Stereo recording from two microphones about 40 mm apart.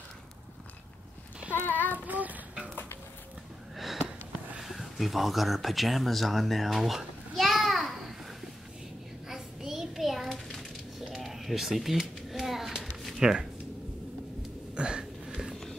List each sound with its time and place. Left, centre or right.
1.7 s child singing: left
2.0 s child singing: right
3.7 s sniff: centre
4.6 s speech: centre
7.3 s a sound: centre
11.2 s speech: centre
12.3 s a sound: centre
13.2 s speech: centre
14.8 s a sound: centre